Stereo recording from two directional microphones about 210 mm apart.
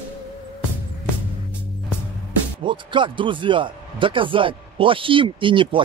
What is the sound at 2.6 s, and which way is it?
A man's voice, 25° right (ahead or behind).